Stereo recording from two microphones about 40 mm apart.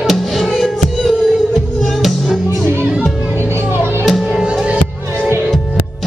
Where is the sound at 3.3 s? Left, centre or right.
Right.